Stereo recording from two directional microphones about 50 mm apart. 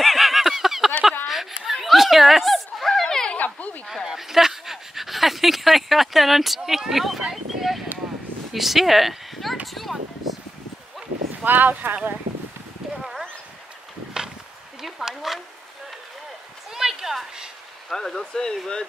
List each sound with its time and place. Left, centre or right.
0.0 s a sound: centre
3.3 s dog: left
3.8 s dog: centre
8.5 s speech: centre
9.7 s a sound: centre
11.4 s speech: right
14.8 s speech: centre
16.7 s a sound: centre
17.8 s speech: centre